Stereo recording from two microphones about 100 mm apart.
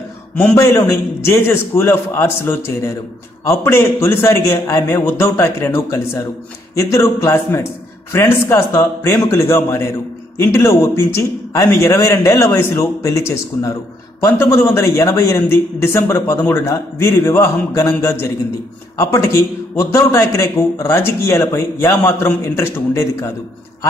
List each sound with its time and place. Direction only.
0.8 s a man's voice: 25° left (ahead or behind)